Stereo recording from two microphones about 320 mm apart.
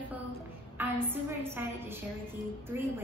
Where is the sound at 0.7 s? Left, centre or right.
Centre.